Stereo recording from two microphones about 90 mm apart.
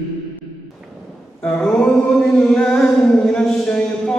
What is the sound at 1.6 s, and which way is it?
Music, 5° left (ahead or behind).